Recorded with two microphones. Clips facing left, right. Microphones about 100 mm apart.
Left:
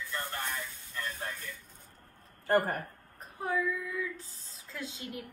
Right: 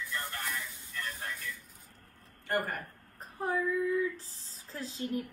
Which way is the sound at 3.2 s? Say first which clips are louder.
Even; 35° right (ahead or behind).